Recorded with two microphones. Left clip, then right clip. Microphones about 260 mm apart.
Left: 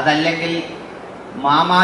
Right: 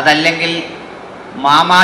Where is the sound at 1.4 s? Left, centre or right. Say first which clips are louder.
Right 5 dB; left.